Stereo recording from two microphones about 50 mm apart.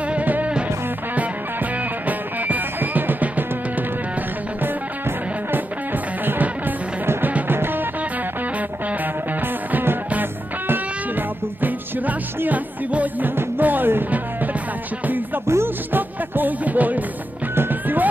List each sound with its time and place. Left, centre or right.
0.1 s music: right
2.0 s music: right
6.2 s music: right
9.7 s music: right
15.0 s music: right
15.4 s music: right
15.9 s music: right